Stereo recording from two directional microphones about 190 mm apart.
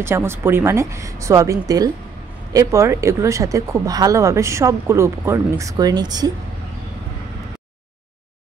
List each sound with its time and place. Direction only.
0.0 s speech: 15° right (ahead or behind)